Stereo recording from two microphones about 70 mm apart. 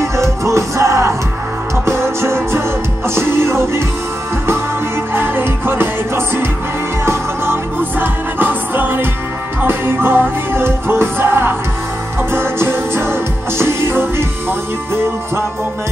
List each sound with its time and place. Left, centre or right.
0.0 s music: right
5.1 s music: right
8.0 s music: right